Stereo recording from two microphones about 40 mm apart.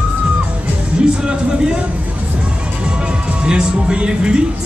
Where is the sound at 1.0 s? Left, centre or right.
Right.